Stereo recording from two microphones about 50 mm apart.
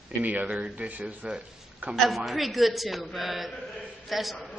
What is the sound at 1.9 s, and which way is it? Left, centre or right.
A man's voice, centre.